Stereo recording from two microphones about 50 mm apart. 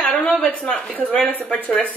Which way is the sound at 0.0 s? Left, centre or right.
Left.